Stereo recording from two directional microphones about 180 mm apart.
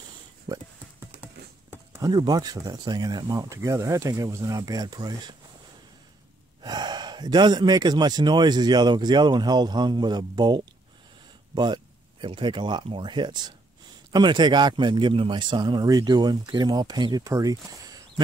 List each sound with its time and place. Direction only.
0.5 s speech: 20° right (ahead or behind)
6.6 s speech: 25° right (ahead or behind)